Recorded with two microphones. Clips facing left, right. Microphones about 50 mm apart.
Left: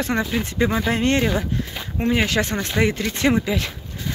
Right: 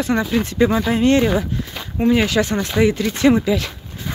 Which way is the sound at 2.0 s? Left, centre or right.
Centre.